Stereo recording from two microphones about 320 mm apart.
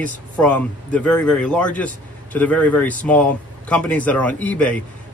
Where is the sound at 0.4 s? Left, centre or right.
Centre.